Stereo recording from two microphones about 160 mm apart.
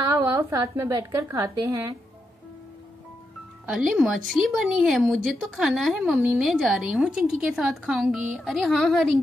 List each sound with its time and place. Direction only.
0.0 s a woman's voice: 20° right (ahead or behind)
3.6 s speech: 5° right (ahead or behind)